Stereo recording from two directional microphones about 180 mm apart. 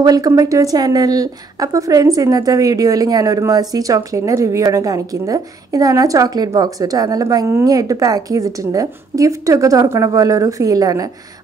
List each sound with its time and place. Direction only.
0.0 s speech: 20° right (ahead or behind)